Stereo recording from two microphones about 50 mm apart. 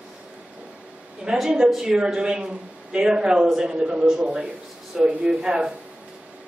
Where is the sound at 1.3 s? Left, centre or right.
Centre.